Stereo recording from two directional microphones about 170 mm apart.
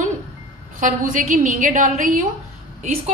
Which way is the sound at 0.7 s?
50° right (ahead or behind).